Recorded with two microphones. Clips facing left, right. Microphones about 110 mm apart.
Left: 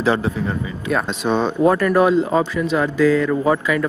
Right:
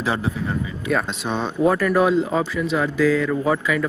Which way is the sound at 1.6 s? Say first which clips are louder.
Left 1 dB; centre (ahead or behind).